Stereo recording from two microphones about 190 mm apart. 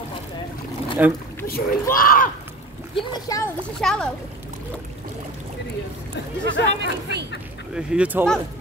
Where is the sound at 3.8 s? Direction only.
5° left (ahead or behind).